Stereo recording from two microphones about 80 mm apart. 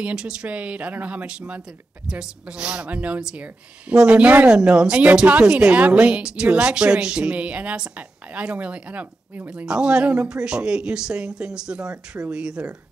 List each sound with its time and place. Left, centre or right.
0.0 s a woman's voice: centre